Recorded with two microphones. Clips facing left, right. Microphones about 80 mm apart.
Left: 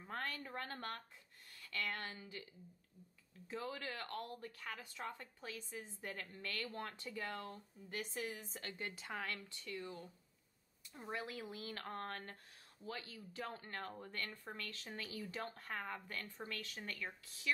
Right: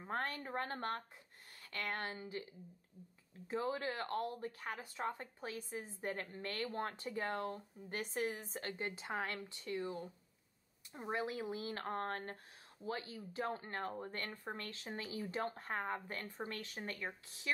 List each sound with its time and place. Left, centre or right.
0.0 s speech: right
3.4 s speech: right